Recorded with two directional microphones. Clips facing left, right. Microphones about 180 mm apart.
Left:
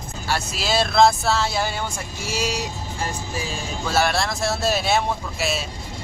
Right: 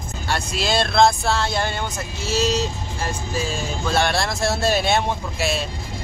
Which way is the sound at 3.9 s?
5° left (ahead or behind).